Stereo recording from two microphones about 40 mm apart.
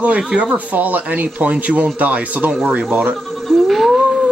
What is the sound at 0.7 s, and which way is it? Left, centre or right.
Speech, right.